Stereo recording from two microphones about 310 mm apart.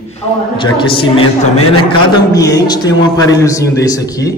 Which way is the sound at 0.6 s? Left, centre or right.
Centre.